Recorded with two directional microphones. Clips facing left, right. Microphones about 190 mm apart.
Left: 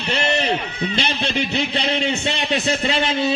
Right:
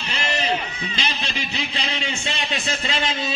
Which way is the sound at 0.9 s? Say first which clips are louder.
Left 7 dB; 65° left (ahead or behind).